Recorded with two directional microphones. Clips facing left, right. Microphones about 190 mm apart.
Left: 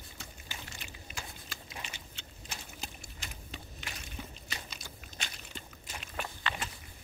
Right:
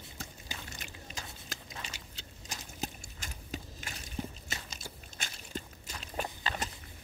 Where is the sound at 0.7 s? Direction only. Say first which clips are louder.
Right 1 dB; 45° right (ahead or behind).